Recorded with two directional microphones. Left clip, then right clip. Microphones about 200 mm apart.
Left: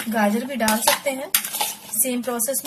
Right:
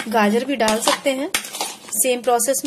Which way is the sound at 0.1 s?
45° right (ahead or behind).